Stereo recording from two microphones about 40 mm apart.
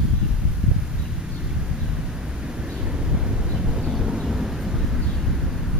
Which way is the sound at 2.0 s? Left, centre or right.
Centre.